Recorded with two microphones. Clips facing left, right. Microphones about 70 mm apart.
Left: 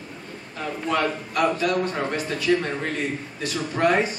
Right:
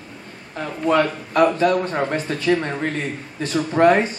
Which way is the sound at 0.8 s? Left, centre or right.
Right.